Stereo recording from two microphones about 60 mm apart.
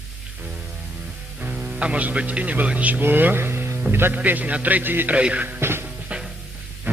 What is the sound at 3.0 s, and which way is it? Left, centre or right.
Speech, right.